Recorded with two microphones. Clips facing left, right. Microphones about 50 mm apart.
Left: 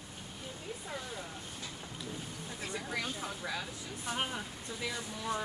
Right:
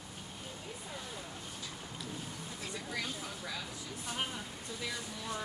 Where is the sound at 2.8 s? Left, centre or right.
Left.